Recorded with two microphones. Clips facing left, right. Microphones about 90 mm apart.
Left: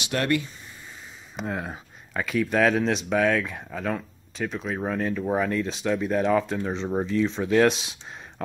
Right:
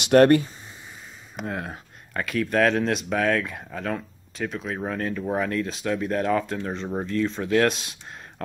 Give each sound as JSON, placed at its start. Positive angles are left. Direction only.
{"t": 0.0, "sound": "speech", "side_deg": -50}
{"t": 1.3, "sound": "speech", "side_deg": 0}